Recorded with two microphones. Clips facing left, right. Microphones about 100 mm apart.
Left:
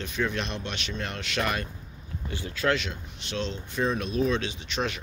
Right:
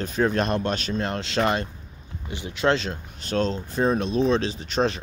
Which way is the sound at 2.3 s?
20° right (ahead or behind).